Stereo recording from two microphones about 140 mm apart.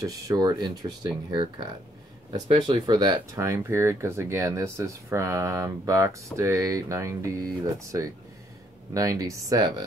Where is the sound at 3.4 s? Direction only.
20° right (ahead or behind).